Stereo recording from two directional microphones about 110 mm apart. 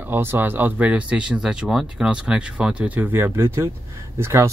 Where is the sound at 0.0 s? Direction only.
20° right (ahead or behind).